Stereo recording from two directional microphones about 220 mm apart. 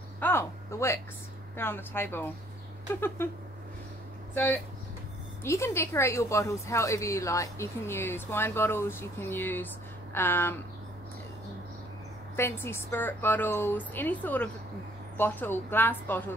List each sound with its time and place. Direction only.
0.2 s a sound: 10° left (ahead or behind)
1.6 s a woman's voice: 10° left (ahead or behind)
4.3 s a woman's voice: 10° left (ahead or behind)
12.4 s a woman's voice: 10° left (ahead or behind)